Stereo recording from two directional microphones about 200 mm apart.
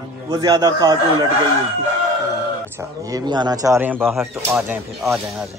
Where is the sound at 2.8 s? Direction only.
20° right (ahead or behind).